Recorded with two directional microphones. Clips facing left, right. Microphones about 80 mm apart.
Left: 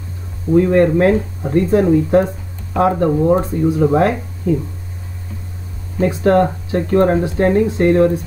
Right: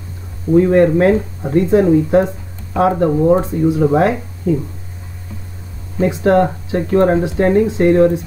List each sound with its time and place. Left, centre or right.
0.6 s speech: centre
5.9 s speech: centre